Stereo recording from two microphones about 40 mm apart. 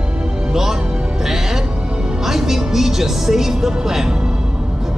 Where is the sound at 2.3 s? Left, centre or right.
Centre.